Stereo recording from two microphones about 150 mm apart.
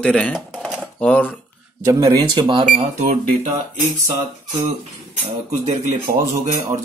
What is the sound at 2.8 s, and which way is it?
Speech, 45° right (ahead or behind).